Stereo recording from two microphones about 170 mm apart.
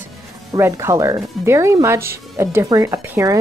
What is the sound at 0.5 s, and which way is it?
Speech, 15° right (ahead or behind).